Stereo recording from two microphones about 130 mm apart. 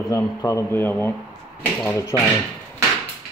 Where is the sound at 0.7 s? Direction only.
15° left (ahead or behind).